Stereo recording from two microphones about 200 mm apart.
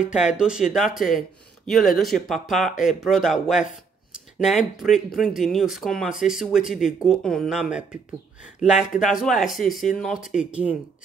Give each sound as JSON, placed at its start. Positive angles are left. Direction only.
{"t": 0.0, "sound": "speech", "side_deg": -5}